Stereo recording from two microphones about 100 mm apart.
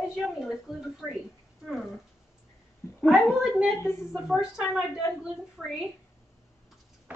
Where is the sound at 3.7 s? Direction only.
25° left (ahead or behind).